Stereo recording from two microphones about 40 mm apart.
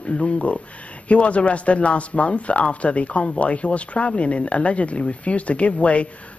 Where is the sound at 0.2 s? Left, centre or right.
Left.